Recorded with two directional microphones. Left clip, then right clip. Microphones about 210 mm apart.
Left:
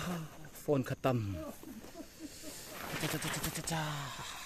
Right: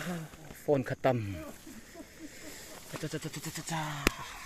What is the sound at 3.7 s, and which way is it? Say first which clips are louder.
Speech: right 9 dB; centre (ahead or behind).